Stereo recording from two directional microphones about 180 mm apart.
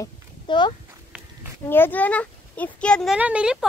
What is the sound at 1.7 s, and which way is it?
A child's voice, 10° left (ahead or behind).